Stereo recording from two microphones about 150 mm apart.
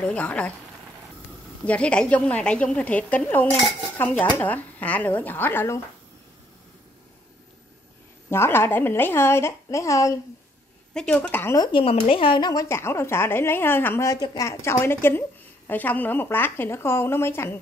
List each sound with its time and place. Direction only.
0.0 s a woman's voice: 10° left (ahead or behind)
1.7 s a woman's voice: 5° left (ahead or behind)
8.3 s a woman's voice: 15° left (ahead or behind)
10.9 s a woman's voice: 5° left (ahead or behind)
11.5 s a woman's voice: 30° left (ahead or behind)
12.6 s a woman's voice: 15° left (ahead or behind)